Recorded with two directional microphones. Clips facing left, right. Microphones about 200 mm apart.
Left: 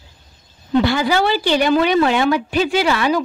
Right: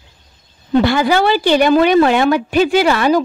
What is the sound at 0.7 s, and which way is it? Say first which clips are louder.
A woman's voice: right 3 dB; 55° right (ahead or behind).